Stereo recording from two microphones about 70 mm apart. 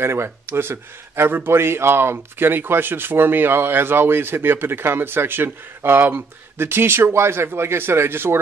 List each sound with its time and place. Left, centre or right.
0.0 s speech: right